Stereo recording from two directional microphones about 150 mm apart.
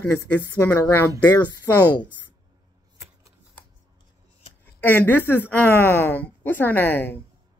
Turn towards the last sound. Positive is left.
turn(degrees=15)  # may be behind; listen again after turning